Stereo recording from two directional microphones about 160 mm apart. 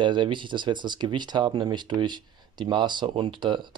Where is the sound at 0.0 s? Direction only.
30° right (ahead or behind).